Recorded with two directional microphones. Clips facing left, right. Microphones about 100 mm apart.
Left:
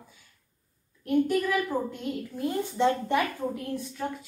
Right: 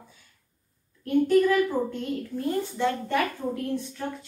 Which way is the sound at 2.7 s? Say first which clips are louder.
Left 4 dB; 20° left (ahead or behind).